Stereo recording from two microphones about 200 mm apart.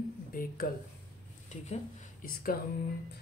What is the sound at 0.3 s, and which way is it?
Speech, 45° left (ahead or behind).